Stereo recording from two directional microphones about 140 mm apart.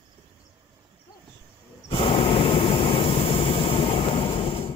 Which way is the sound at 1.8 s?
40° left (ahead or behind).